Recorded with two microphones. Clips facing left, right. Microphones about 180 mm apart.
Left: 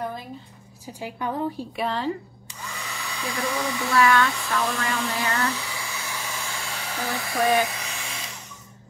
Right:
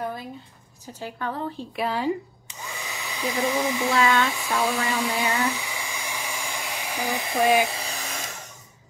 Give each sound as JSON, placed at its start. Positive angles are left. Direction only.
{"t": 0.9, "sound": "a woman's voice", "side_deg": 15}
{"t": 1.8, "sound": "speech", "side_deg": -10}
{"t": 7.6, "sound": "vacuum cleaner", "side_deg": -30}